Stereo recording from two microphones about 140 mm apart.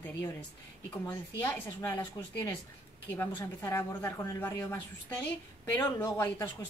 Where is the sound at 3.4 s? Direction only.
20° left (ahead or behind).